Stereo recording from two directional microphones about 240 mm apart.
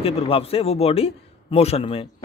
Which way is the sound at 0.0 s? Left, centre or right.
Left.